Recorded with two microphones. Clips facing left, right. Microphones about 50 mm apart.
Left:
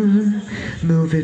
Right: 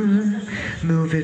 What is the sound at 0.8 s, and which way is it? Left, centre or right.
Speech, right.